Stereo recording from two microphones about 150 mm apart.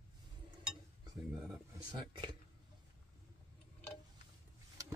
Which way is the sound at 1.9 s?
30° right (ahead or behind).